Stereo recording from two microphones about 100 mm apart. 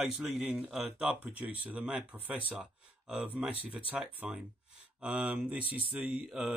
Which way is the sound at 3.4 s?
15° right (ahead or behind).